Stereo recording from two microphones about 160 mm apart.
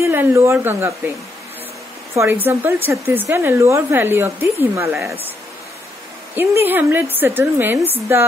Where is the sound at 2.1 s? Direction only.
15° right (ahead or behind).